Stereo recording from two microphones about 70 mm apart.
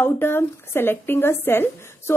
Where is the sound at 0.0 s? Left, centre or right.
Left.